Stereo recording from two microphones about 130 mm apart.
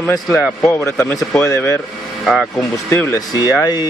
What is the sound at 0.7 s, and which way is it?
Speech, 20° left (ahead or behind).